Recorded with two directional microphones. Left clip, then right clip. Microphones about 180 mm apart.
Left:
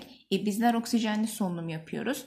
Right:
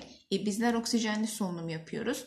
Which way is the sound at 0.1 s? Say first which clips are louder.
Left 3 dB; 40° left (ahead or behind).